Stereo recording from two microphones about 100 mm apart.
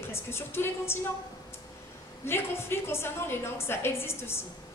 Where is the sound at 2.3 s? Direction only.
25° left (ahead or behind).